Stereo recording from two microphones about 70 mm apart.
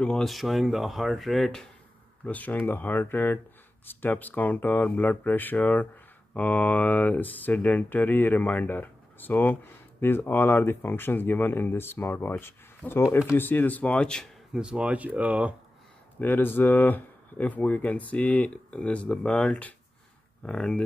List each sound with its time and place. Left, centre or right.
0.0 s speech: centre
2.2 s speech: left
14.5 s speech: centre
16.2 s speech: left